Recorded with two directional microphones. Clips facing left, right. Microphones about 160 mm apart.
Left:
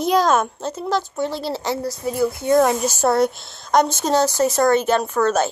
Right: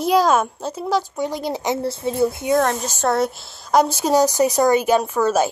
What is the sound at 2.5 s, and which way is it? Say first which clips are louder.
A woman's voice: left 3 dB; 5° left (ahead or behind).